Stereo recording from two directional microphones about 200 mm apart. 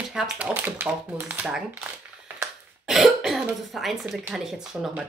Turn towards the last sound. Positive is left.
turn(degrees=-5)  # may be behind; listen again after turning